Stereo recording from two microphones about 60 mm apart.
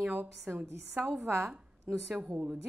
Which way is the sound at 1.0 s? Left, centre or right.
Right.